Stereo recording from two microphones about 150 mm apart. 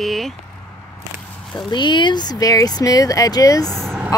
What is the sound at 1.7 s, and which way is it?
Speech, 30° left (ahead or behind).